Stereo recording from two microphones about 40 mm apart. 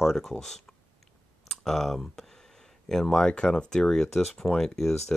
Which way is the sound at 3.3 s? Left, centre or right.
Left.